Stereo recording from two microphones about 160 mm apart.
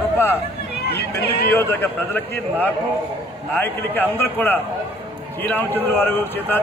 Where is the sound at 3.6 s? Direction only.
10° left (ahead or behind).